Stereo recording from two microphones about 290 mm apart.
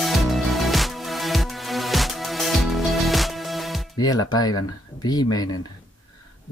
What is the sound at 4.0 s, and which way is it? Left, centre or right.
Speech, centre.